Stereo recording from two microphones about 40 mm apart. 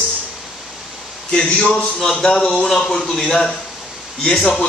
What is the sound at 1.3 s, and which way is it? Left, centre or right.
A man's voice, centre.